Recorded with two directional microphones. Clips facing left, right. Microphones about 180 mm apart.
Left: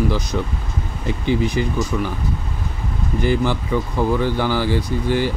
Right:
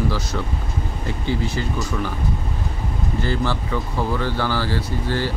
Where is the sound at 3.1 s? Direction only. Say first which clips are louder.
Left 5 dB; 15° left (ahead or behind).